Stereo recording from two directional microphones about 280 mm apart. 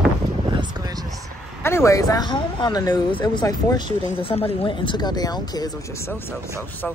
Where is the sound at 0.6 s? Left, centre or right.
Centre.